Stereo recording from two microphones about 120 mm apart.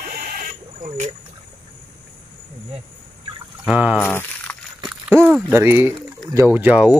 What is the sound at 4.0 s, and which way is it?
Speech, 20° left (ahead or behind).